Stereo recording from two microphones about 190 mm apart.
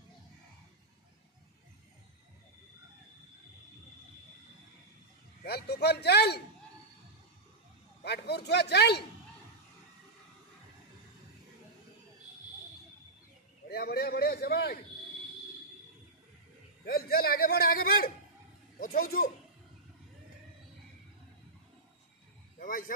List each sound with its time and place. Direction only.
5.4 s a man's voice: 60° left (ahead or behind)
8.0 s a man's voice: 60° left (ahead or behind)
13.7 s a man's voice: 55° left (ahead or behind)
16.8 s a man's voice: 55° left (ahead or behind)
22.6 s speech: 45° left (ahead or behind)